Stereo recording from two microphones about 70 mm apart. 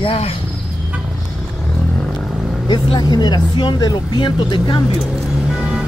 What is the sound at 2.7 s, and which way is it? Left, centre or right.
Speech, left.